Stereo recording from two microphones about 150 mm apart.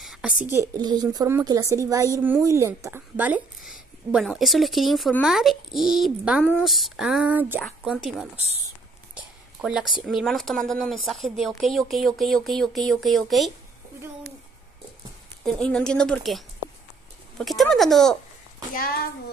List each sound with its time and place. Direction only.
0.0 s a sound: centre (ahead or behind)
0.4 s speech: 15° right (ahead or behind)
0.7 s a woman's voice: 25° right (ahead or behind)
7.6 s speech: centre (ahead or behind)
9.1 s a sound: 5° right (ahead or behind)
10.0 s speech: centre (ahead or behind)
15.4 s speech: 5° left (ahead or behind)
18.7 s a child's voice: 80° left